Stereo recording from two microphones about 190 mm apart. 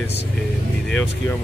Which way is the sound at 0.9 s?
5° left (ahead or behind).